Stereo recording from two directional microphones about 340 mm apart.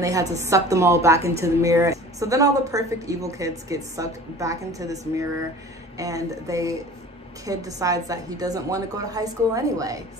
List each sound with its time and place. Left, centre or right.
0.0 s a woman's voice: centre